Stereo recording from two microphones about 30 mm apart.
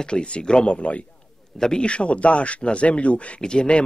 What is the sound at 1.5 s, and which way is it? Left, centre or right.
Speech, centre.